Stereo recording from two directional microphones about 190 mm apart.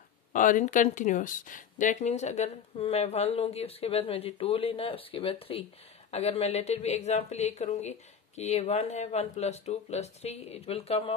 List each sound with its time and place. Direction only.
0.3 s speech: 45° left (ahead or behind)